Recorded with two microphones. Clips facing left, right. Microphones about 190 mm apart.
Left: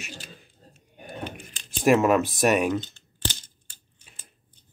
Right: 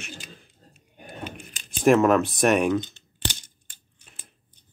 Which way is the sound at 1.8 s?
5° left (ahead or behind).